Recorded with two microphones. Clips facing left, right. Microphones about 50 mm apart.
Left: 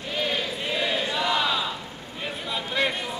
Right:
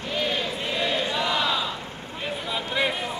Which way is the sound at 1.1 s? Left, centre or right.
Centre.